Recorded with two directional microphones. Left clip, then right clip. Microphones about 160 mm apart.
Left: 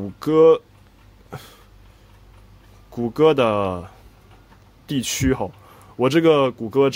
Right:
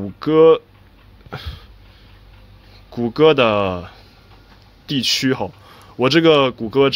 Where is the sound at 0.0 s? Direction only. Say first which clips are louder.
Right 2 dB; 20° left (ahead or behind).